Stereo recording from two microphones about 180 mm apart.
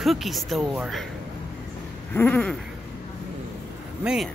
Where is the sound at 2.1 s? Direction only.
10° left (ahead or behind).